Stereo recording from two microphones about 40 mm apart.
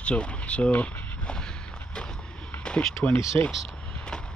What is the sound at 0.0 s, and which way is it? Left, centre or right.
Speech, left.